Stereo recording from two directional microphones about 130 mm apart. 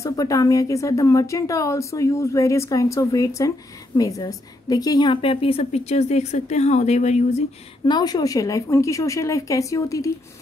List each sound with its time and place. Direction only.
0.0 s a woman's voice: 25° left (ahead or behind); by 7.4 s 60° left (ahead or behind)
7.8 s a woman's voice: 35° left (ahead or behind)